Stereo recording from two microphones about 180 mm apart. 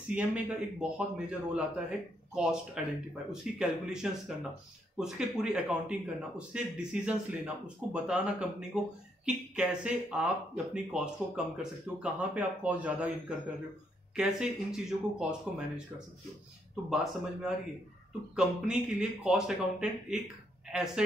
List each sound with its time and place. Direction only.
0.1 s speech: 10° right (ahead or behind)
14.1 s speech: 5° right (ahead or behind)
16.9 s speech: 5° right (ahead or behind)